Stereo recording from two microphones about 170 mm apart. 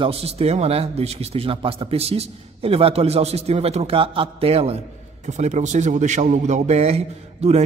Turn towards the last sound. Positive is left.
turn(degrees=-40)  # may be behind; listen again after turning